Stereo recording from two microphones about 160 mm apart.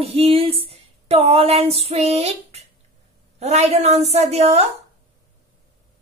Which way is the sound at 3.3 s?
45° right (ahead or behind).